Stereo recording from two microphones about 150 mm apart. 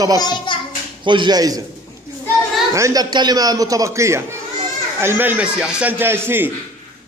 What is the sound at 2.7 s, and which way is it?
A man's voice, 20° right (ahead or behind).